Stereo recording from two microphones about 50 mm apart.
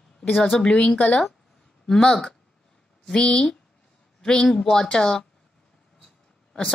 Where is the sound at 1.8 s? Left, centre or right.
Centre.